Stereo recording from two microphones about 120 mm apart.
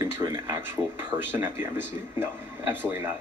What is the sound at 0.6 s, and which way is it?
A man's voice, 20° right (ahead or behind).